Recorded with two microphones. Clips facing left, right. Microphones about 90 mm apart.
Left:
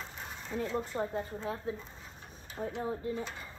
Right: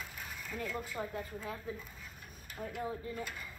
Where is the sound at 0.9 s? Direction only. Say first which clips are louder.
Left 5 dB; 30° left (ahead or behind).